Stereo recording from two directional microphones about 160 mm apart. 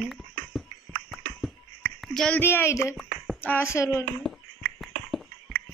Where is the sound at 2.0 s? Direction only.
5° left (ahead or behind).